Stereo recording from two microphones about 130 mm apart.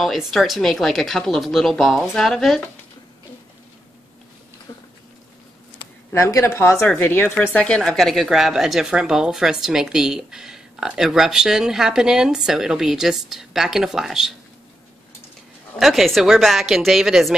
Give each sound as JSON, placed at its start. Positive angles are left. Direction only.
{"t": 0.0, "sound": "speech", "side_deg": 0}
{"t": 6.1, "sound": "speech", "side_deg": 20}
{"t": 15.8, "sound": "speech", "side_deg": 0}